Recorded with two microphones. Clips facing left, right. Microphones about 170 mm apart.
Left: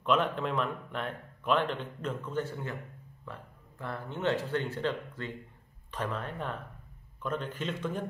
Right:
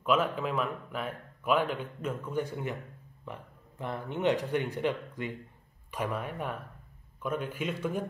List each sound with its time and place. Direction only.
0.0 s speech: 5° right (ahead or behind)